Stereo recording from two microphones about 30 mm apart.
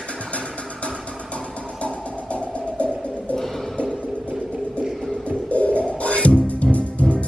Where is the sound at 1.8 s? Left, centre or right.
Left.